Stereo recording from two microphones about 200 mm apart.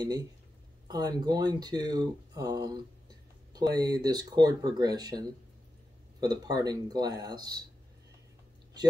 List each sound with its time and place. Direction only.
0.8 s speech: 20° right (ahead or behind)